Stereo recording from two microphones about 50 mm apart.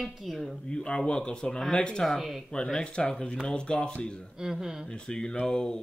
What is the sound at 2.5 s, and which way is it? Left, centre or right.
Speech, centre.